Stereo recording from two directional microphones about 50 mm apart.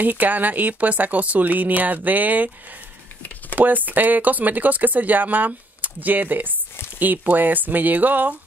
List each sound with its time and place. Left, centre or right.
0.0 s speech: right
3.5 s speech: right